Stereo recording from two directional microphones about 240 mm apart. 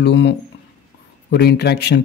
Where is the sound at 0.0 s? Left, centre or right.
Left.